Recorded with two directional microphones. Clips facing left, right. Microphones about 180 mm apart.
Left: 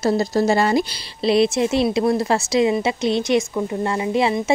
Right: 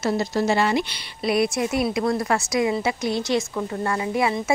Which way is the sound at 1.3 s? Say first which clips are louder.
Left 5 dB; 25° left (ahead or behind).